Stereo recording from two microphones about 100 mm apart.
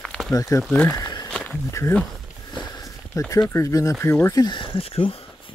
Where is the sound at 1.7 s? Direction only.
30° left (ahead or behind).